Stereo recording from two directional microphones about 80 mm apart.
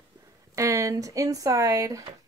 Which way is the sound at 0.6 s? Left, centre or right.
Right.